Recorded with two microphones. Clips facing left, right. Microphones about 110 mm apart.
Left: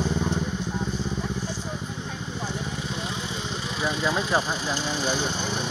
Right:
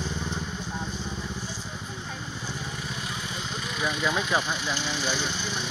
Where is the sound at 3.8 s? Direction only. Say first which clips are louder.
Left 2 dB; 30° left (ahead or behind).